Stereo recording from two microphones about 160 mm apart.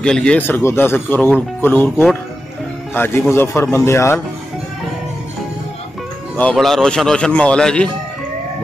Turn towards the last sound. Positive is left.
turn(degrees=5)  # may be behind; listen again after turning